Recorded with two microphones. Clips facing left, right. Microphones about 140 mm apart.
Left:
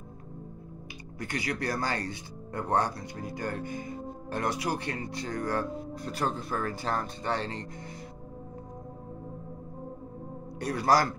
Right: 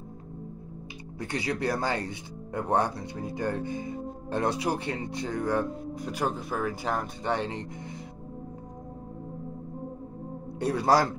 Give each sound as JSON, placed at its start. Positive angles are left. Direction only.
{"t": 1.2, "sound": "speech", "side_deg": -25}
{"t": 10.6, "sound": "speech", "side_deg": -25}